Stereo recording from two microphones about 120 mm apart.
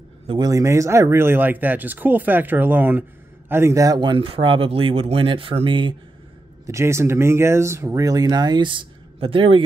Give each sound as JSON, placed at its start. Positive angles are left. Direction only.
{"t": 0.4, "sound": "speech", "side_deg": -25}
{"t": 6.6, "sound": "speech", "side_deg": -25}